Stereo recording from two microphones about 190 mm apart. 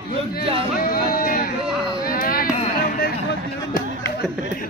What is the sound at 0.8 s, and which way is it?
Speech, 50° left (ahead or behind).